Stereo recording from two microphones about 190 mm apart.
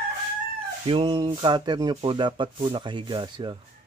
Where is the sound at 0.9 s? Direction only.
25° right (ahead or behind).